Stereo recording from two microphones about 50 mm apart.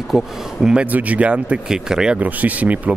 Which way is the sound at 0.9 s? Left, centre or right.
Right.